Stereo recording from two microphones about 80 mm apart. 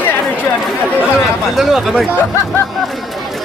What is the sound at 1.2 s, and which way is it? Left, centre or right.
Speech, centre.